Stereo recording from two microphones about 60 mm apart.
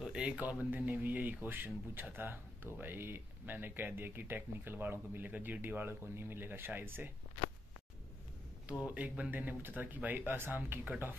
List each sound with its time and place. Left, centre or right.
0.4 s speech: right
8.8 s speech: right